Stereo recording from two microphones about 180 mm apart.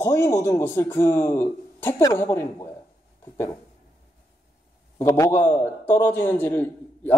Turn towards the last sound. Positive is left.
turn(degrees=10)  # may be behind; listen again after turning